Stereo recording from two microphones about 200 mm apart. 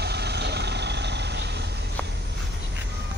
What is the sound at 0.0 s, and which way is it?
Vehicle, 55° right (ahead or behind).